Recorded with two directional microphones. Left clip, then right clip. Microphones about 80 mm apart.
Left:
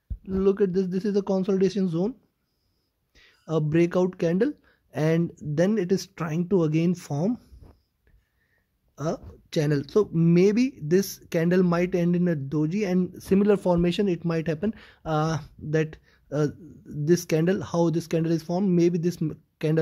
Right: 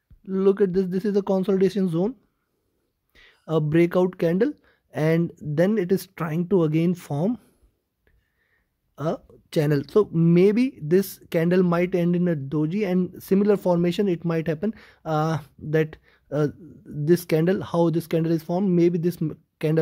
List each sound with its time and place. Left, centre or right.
0.2 s speech: right
3.2 s speech: right
8.9 s speech: right